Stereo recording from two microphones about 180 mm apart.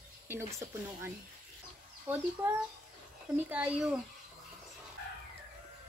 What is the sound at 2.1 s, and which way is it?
Speech, 10° right (ahead or behind).